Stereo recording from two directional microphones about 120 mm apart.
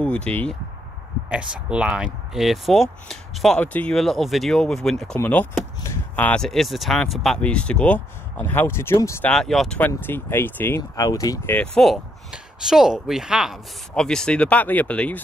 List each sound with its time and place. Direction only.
0.0 s speech: 10° left (ahead or behind)
1.3 s speech: 10° right (ahead or behind); by 9.2 s 25° left (ahead or behind)
9.2 s speech: 5° left (ahead or behind)
10.8 s speech: 30° left (ahead or behind)
11.4 s speech: 10° left (ahead or behind); by 13.6 s 5° right (ahead or behind)
13.9 s speech: 5° left (ahead or behind)